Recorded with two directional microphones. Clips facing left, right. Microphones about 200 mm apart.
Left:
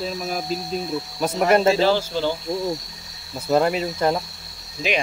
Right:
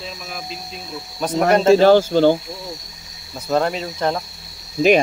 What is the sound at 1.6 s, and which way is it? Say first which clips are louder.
Speech: right 7 dB; 55° right (ahead or behind).